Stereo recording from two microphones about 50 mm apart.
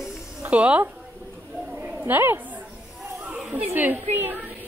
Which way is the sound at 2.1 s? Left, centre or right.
Right.